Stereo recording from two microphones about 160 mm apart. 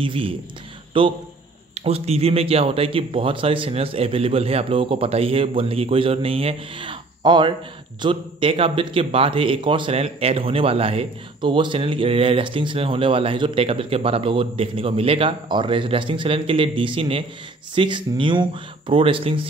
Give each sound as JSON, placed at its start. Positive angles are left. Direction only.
{"t": 0.0, "sound": "speech", "side_deg": -35}